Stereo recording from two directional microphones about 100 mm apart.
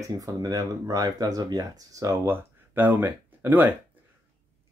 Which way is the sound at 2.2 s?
20° right (ahead or behind).